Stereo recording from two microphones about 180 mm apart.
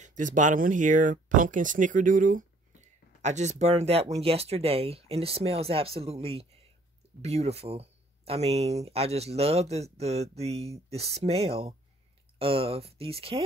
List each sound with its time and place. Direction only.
0.0 s speech: 45° right (ahead or behind)